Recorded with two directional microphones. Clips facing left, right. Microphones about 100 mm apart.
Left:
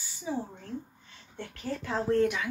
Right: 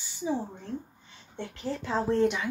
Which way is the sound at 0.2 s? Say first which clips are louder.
Right 3 dB; 15° right (ahead or behind).